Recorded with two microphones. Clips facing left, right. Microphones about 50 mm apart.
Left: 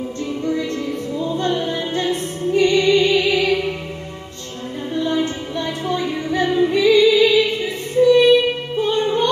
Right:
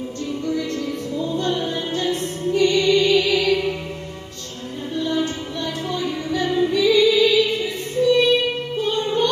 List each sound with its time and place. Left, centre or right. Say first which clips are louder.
1.1 s music: left 2 dB; left
4.9 s music: left 2 dB; left